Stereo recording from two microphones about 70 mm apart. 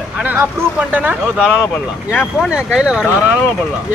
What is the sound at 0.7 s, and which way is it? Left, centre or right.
Speech, right.